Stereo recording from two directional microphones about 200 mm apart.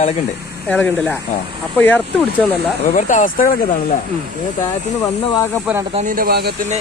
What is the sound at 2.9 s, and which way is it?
Speech, 40° left (ahead or behind).